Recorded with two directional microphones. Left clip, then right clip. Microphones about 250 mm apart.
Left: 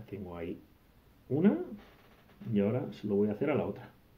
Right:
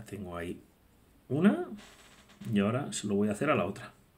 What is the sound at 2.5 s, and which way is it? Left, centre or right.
Speech, right.